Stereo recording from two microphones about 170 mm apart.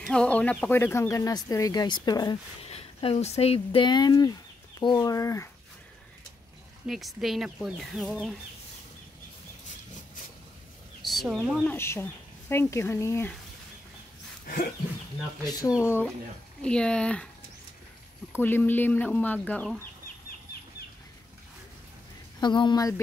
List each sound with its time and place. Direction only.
0.0 s speech: 5° left (ahead or behind); by 2.3 s 25° left (ahead or behind)
2.6 s speech: 35° left (ahead or behind); by 5.5 s 15° left (ahead or behind)
6.9 s speech: centre (ahead or behind)
11.0 s a sound: centre (ahead or behind)
11.6 s speech: 15° left (ahead or behind)
14.4 s a sound: 55° left (ahead or behind)
15.8 s speech: 15° left (ahead or behind)
18.3 s speech: 10° left (ahead or behind)
22.4 s speech: 25° left (ahead or behind)